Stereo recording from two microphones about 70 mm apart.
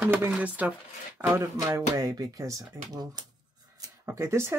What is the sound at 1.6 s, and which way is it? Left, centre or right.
Speech, right.